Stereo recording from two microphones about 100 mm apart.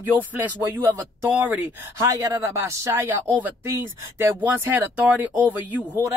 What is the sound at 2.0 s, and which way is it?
Speech, 35° right (ahead or behind).